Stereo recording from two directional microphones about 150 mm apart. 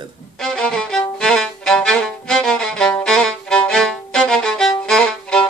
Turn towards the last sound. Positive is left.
turn(degrees=5)  # may be behind; listen again after turning